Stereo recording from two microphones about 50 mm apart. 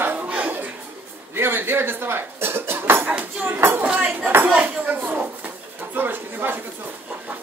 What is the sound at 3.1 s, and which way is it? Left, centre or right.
Speech, right.